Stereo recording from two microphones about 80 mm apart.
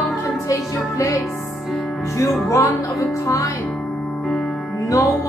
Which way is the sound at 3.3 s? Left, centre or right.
Left.